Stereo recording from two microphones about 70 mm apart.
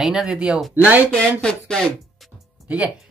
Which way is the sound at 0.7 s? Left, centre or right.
Right.